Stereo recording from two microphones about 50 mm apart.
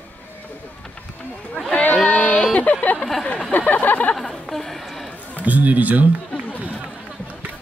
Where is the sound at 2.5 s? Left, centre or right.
Left.